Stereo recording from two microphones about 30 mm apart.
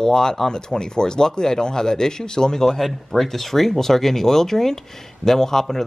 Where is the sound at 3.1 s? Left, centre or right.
Centre.